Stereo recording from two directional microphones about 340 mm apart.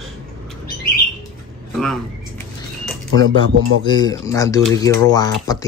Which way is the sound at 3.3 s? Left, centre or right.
Right.